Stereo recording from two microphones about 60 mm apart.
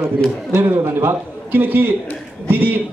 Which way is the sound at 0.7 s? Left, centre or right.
Right.